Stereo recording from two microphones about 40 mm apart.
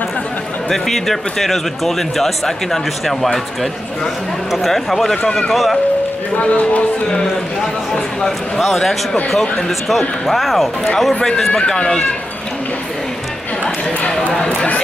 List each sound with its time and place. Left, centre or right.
0.7 s speech: centre
4.5 s speech: centre
5.1 s speech: left
5.5 s speech: centre
6.3 s speech: left
8.5 s speech: centre
11.1 s speech: centre
14.3 s speech: centre